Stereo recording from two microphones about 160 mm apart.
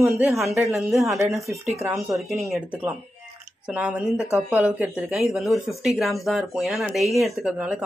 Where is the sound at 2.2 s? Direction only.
Centre (ahead or behind).